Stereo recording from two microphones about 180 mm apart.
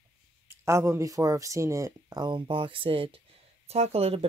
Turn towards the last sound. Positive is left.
turn(degrees=-35)  # may be behind; listen again after turning